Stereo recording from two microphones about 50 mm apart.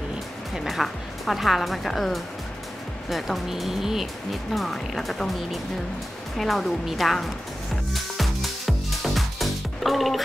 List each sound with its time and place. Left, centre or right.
0.7 s speech: centre
7.9 s music: centre